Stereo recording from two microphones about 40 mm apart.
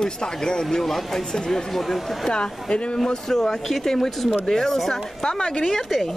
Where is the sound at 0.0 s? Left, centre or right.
Centre.